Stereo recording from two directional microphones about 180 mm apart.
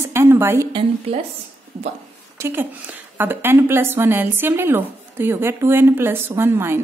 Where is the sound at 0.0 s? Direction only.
15° right (ahead or behind).